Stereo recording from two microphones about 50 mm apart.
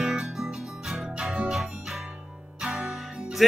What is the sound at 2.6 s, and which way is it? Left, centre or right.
Music, centre.